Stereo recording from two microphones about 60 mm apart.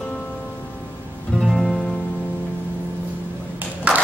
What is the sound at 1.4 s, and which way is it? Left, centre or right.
Music, centre.